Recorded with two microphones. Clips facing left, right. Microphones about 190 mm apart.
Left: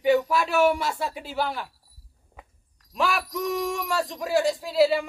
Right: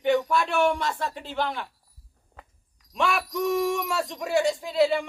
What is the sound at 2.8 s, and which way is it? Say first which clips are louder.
Speech: even; centre (ahead or behind).